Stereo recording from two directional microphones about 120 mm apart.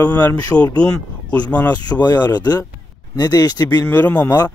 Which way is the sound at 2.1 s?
35° left (ahead or behind).